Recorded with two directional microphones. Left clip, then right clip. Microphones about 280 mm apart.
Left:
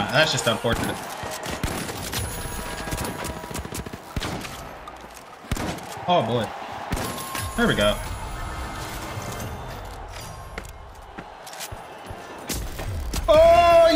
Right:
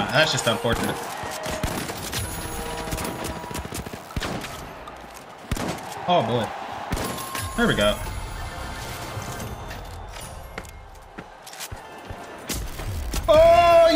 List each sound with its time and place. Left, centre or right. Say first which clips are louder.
0.0 s fusillade: even; centre
5.5 s fusillade: right 1 dB; centre
9.2 s music: left 1 dB; centre
13.1 s a sound: even; centre